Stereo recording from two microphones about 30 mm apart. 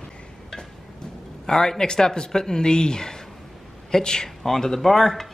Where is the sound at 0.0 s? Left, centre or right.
Centre.